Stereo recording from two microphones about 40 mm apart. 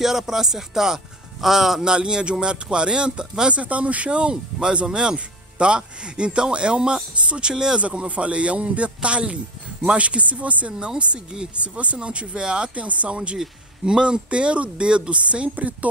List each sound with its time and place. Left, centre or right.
0.0 s speech: centre
1.9 s speech: right
3.5 s a man's voice: right
12.7 s a man's voice: right